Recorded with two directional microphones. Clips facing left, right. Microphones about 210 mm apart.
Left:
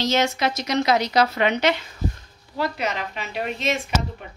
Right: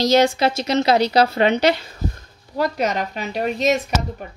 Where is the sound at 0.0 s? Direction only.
35° right (ahead or behind).